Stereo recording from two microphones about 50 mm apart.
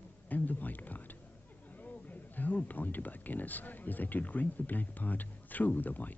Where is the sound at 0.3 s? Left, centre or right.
Left.